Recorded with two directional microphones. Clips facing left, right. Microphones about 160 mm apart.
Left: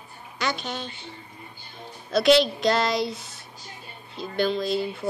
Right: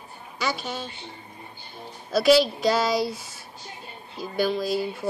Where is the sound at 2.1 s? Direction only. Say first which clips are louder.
Even; 5° right (ahead or behind).